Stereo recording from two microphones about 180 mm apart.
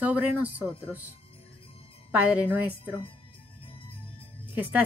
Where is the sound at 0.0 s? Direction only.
10° right (ahead or behind).